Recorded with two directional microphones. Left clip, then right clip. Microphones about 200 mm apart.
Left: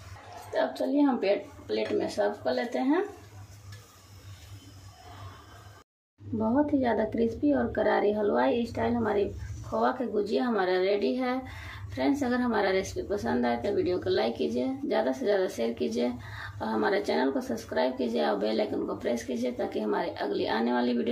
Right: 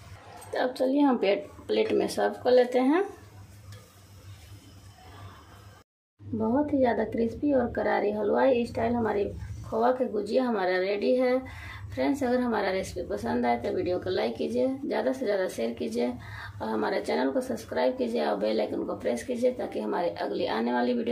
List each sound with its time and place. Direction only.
0.5 s speech: 20° right (ahead or behind)
6.3 s a woman's voice: 5° right (ahead or behind)